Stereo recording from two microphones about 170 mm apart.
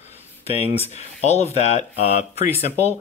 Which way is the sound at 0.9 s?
40° left (ahead or behind).